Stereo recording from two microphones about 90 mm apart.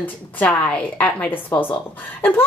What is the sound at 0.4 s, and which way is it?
A woman's voice, 10° left (ahead or behind).